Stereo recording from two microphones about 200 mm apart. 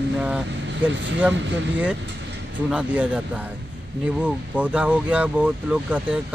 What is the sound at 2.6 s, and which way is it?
Speech, 5° right (ahead or behind).